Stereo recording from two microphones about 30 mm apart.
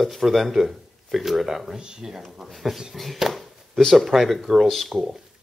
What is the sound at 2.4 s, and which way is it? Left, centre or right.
Speech, centre.